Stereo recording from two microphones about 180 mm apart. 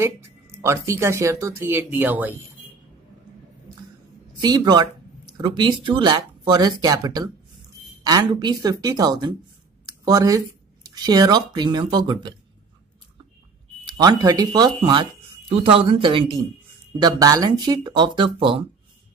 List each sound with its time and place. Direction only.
0.6 s speech: 15° right (ahead or behind)
4.4 s speech: 25° right (ahead or behind)
13.8 s speech: 20° right (ahead or behind)